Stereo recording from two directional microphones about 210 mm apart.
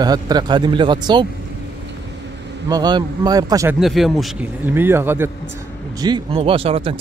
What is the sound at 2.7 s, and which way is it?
A man's voice, 20° right (ahead or behind).